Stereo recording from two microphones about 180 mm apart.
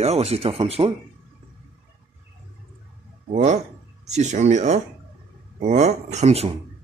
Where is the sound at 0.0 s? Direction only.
35° right (ahead or behind).